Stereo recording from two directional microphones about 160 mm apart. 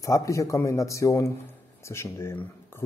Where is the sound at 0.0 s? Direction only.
20° left (ahead or behind).